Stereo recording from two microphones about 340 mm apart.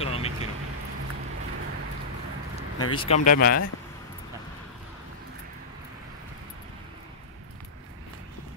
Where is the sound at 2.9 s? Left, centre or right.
Centre.